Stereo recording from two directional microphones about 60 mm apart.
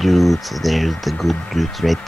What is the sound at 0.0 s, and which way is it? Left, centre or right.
Speech, centre.